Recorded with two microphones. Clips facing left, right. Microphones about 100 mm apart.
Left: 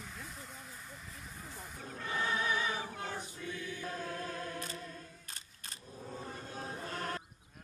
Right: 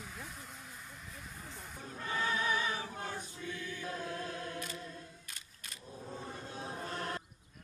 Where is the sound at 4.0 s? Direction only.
45° left (ahead or behind).